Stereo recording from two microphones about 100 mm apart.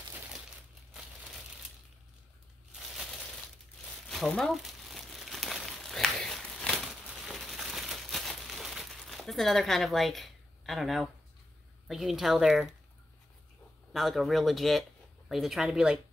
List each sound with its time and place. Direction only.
2.7 s crushing: centre (ahead or behind)
4.4 s crumpling: centre (ahead or behind)
6.8 s crumpling: 5° right (ahead or behind)
11.9 s a woman's voice: centre (ahead or behind)
13.9 s speech: centre (ahead or behind)